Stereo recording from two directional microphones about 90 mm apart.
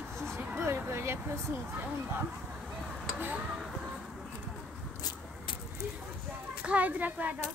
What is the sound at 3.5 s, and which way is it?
Speech, centre (ahead or behind).